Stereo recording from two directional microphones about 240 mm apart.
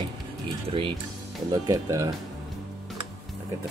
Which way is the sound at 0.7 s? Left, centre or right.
Right.